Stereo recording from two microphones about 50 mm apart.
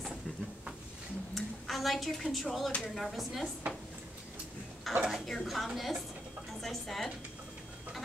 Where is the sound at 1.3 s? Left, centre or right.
Centre.